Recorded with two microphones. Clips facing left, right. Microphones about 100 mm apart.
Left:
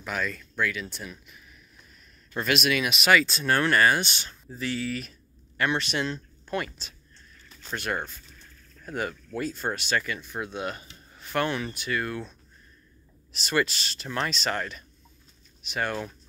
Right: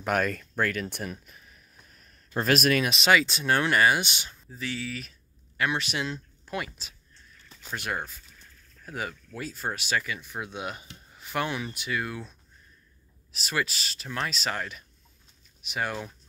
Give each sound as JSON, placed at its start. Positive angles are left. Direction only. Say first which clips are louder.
{"t": 0.0, "sound": "speech", "louder": "right 5 dB", "side_deg": -55}
{"t": 3.1, "sound": "speech", "louder": "left 1 dB", "side_deg": -20}
{"t": 4.5, "sound": "speech", "louder": "left 4 dB", "side_deg": 0}